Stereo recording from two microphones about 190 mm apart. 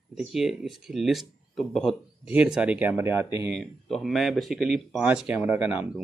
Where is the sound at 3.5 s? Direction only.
Centre (ahead or behind).